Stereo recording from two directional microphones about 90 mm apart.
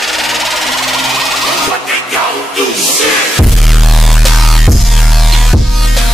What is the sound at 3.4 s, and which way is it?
Music, centre (ahead or behind).